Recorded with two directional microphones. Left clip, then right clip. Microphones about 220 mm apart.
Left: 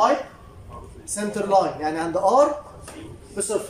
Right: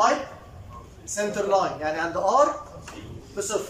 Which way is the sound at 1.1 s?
25° left (ahead or behind).